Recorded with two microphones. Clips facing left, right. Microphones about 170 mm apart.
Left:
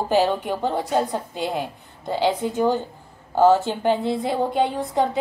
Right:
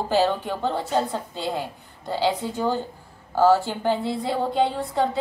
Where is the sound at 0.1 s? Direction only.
15° left (ahead or behind).